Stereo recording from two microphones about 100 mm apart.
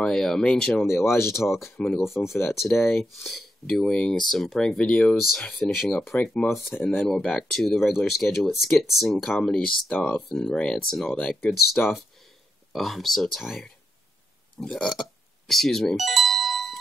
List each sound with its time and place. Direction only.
0.0 s speech: 5° left (ahead or behind)
0.8 s speech: 25° left (ahead or behind)
2.0 s speech: 5° right (ahead or behind); by 10.2 s 15° left (ahead or behind)
10.2 s speech: 5° left (ahead or behind)
12.7 s speech: centre (ahead or behind)
14.6 s music: 10° left (ahead or behind)